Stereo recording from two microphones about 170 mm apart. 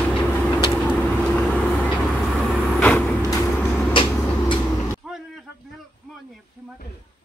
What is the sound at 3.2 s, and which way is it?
Vehicle, 20° left (ahead or behind).